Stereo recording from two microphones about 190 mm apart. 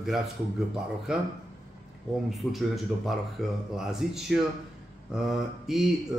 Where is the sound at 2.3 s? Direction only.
Centre (ahead or behind).